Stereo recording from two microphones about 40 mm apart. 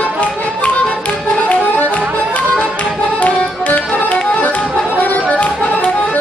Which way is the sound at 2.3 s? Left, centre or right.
Left.